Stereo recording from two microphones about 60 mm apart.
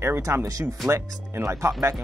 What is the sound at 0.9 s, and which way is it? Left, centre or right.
Speech, right.